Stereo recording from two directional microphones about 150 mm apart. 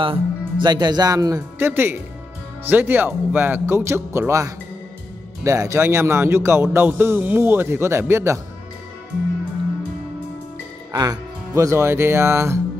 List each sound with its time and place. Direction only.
0.0 s speech: 35° right (ahead or behind); by 8.4 s 15° right (ahead or behind)
10.9 s speech: 25° right (ahead or behind)